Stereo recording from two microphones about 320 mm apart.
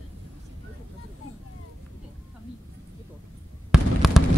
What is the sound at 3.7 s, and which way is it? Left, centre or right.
Basketball bounce, centre.